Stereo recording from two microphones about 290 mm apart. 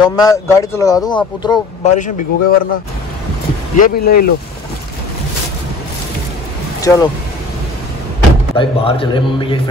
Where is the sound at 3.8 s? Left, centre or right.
Left.